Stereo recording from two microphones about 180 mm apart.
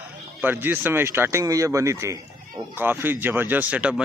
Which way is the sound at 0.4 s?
10° right (ahead or behind).